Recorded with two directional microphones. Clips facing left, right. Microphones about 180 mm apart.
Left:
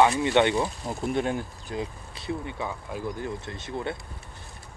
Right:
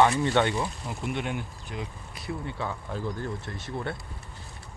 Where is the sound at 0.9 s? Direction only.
40° left (ahead or behind); by 3.9 s 20° left (ahead or behind).